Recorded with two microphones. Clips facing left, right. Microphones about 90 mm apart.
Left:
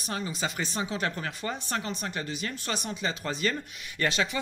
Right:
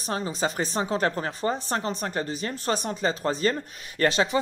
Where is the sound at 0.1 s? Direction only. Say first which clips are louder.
Right 5 dB; 35° right (ahead or behind).